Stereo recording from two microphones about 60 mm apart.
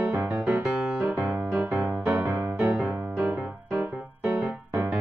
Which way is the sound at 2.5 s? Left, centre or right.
Right.